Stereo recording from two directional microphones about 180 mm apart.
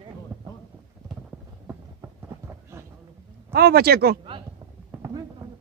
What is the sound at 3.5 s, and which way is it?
Speech, 60° right (ahead or behind).